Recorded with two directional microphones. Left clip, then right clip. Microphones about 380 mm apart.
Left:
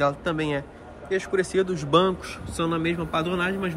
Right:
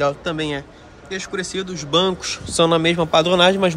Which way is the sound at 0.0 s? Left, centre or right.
Centre.